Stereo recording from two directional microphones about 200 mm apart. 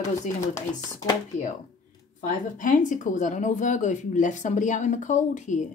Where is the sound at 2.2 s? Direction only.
40° left (ahead or behind).